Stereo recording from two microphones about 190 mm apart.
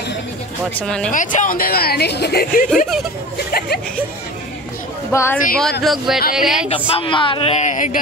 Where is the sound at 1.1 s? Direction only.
45° left (ahead or behind).